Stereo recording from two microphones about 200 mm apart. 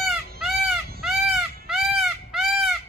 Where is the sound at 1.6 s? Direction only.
Centre (ahead or behind).